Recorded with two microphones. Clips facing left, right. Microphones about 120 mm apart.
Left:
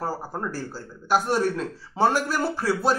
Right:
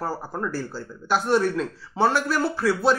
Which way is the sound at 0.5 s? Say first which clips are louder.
Right 2 dB; 40° left (ahead or behind).